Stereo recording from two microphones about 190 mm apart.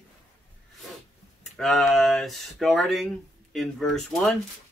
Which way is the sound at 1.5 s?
Centre (ahead or behind).